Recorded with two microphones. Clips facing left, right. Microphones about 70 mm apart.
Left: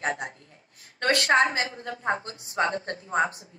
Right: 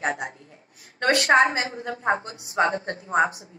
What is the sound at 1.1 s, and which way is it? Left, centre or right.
A woman's voice, right.